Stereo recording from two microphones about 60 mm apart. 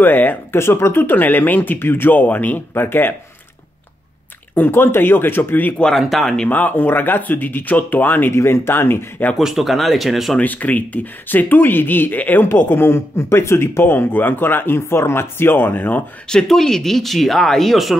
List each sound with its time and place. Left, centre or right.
0.0 s speech: left
0.6 s speech: left
4.6 s speech: left
5.9 s speech: centre
6.5 s speech: left
9.4 s speech: centre
10.4 s speech: left
12.4 s speech: left
16.3 s speech: centre